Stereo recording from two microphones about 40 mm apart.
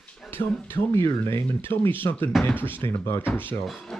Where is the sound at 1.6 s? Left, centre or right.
Left.